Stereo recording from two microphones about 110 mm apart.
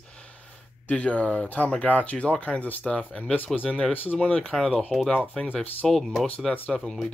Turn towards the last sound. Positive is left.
turn(degrees=5)  # may be behind; listen again after turning